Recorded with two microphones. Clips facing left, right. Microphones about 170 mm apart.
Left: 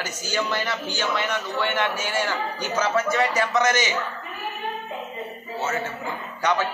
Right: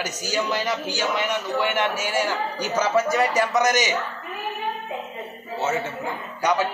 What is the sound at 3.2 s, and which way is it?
Speech, 35° right (ahead or behind).